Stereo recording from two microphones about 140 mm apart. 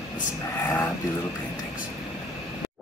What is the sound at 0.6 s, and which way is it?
Speech, 20° left (ahead or behind).